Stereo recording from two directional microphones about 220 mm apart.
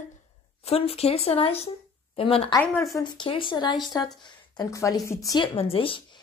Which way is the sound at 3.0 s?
20° left (ahead or behind).